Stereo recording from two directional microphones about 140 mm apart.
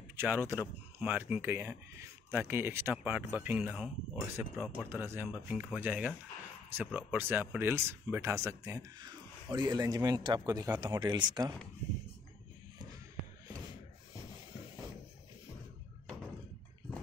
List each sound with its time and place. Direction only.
0.1 s speech: 15° right (ahead or behind)
4.4 s a man's voice: 15° right (ahead or behind)
11.0 s speech: 30° right (ahead or behind)